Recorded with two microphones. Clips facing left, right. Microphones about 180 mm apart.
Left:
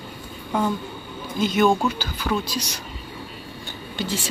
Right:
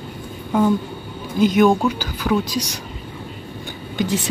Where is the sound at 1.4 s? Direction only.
10° right (ahead or behind).